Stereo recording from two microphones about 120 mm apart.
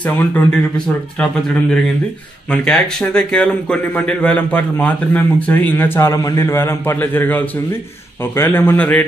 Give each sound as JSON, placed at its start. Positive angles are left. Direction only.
{"t": 0.0, "sound": "a man's voice", "side_deg": 10}